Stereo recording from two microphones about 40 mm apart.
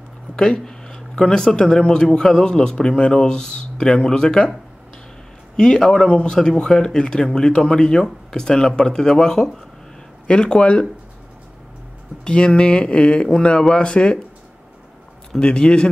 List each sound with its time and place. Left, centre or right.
0.4 s speech: centre
5.9 s speech: left
12.3 s speech: left
15.3 s speech: left